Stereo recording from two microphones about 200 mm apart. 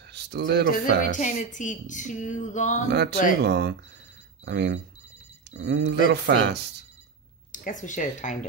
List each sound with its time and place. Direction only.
0.1 s speech: 55° right (ahead or behind)
0.7 s speech: 40° left (ahead or behind)
2.9 s speech: 55° right (ahead or behind)
7.5 s speech: 40° left (ahead or behind)